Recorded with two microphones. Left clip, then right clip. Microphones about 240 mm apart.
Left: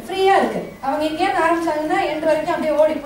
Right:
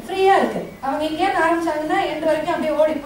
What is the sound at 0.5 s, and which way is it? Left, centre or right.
A woman's voice, centre.